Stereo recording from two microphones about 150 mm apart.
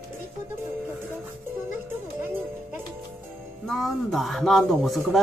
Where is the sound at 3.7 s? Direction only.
Centre (ahead or behind).